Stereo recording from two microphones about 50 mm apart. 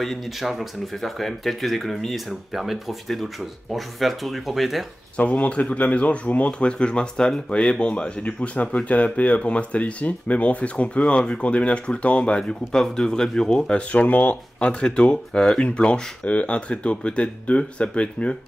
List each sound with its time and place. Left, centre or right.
0.0 s speech: centre
5.1 s speech: left
13.9 s speech: left